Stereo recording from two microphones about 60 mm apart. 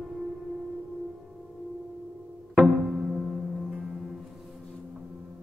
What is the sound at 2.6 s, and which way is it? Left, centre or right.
Music, centre.